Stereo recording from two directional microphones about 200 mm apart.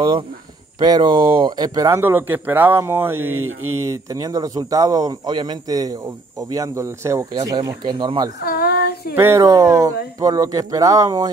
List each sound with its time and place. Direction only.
0.7 s a man's voice: 20° right (ahead or behind)
3.3 s speech: 90° right
3.9 s a man's voice: 15° right (ahead or behind)
8.4 s a sound: 50° left (ahead or behind)
9.1 s a man's voice: 10° right (ahead or behind)